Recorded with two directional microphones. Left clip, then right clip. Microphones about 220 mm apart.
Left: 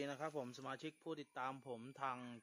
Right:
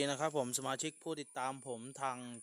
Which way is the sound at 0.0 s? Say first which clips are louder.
Right 10 dB; 50° right (ahead or behind).